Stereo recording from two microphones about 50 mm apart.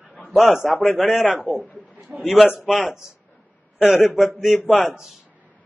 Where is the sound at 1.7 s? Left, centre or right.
Right.